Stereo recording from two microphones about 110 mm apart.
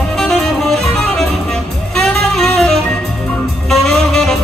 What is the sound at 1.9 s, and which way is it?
Saxophone, 5° left (ahead or behind).